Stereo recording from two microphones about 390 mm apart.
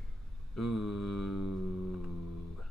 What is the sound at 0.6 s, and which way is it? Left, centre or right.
Mantra, left.